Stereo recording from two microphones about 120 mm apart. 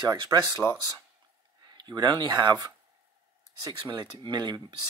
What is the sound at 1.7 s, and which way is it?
Speech, 35° right (ahead or behind).